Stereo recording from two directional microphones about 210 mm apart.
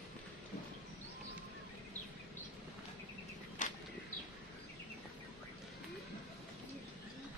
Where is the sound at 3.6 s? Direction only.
35° left (ahead or behind).